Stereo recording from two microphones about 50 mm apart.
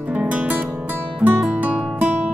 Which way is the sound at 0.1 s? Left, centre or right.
Right.